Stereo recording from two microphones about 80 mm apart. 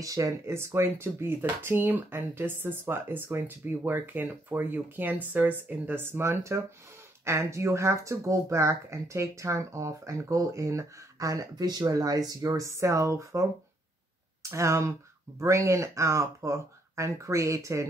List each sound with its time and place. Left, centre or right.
0.0 s speech: right